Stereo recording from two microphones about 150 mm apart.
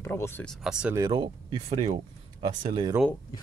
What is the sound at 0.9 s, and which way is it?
Speech, 30° right (ahead or behind).